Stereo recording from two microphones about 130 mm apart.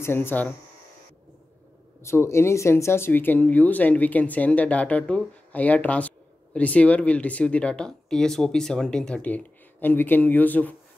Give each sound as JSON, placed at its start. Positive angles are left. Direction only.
{"t": 0.0, "sound": "speech", "side_deg": 15}
{"t": 2.0, "sound": "speech", "side_deg": 20}